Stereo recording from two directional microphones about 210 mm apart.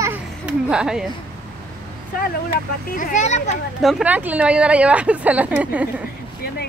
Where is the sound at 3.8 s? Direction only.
5° right (ahead or behind).